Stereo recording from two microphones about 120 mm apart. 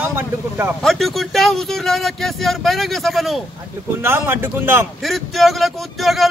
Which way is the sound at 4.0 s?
20° right (ahead or behind).